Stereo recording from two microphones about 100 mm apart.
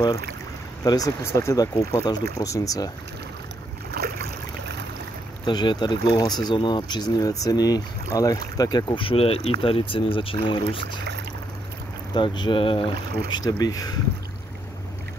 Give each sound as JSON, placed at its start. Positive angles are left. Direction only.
{"t": 0.8, "sound": "speech", "side_deg": 35}
{"t": 5.4, "sound": "speech", "side_deg": 45}
{"t": 12.1, "sound": "speech", "side_deg": 55}
{"t": 13.4, "sound": "speech", "side_deg": 40}